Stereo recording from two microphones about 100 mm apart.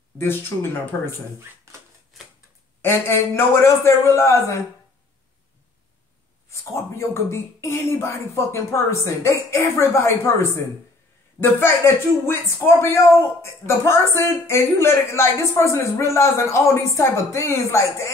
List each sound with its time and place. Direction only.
0.2 s speech: 20° left (ahead or behind)
2.8 s speech: 25° left (ahead or behind)
6.5 s speech: 25° left (ahead or behind)